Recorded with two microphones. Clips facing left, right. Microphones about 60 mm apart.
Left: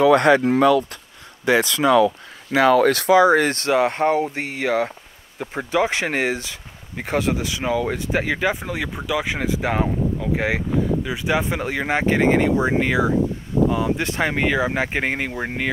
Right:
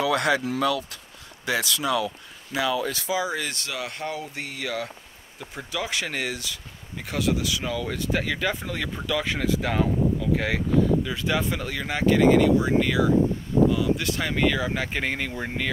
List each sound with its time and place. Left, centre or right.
0.0 s speech: left
2.0 s speech: left